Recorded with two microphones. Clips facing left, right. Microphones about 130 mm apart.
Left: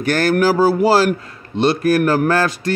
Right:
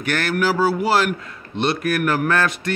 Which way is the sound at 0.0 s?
35° left (ahead or behind).